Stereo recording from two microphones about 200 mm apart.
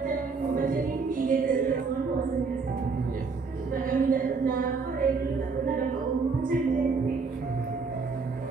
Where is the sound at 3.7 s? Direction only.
45° right (ahead or behind).